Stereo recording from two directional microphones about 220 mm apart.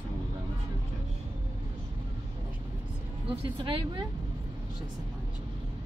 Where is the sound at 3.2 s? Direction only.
25° right (ahead or behind).